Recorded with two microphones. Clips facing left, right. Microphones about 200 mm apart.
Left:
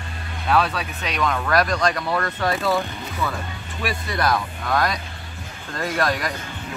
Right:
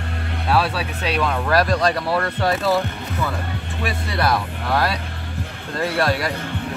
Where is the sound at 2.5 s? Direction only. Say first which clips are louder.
Right 2 dB; 5° right (ahead or behind).